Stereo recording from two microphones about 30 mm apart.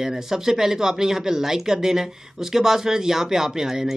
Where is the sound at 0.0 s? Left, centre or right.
Centre.